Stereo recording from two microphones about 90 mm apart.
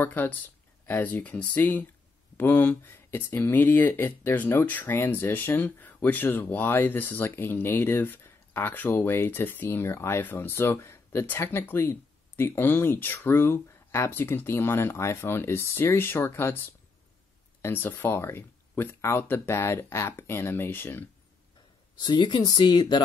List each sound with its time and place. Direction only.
0.0 s speech: 20° left (ahead or behind)
22.0 s speech: 60° left (ahead or behind)